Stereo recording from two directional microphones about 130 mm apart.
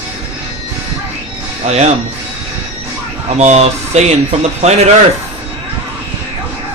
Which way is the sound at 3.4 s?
60° right (ahead or behind).